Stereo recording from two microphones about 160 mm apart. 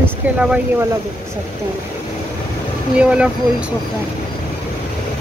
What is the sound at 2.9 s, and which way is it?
Speech, 5° right (ahead or behind).